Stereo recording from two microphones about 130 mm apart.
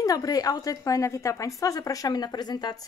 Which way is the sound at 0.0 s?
25° left (ahead or behind).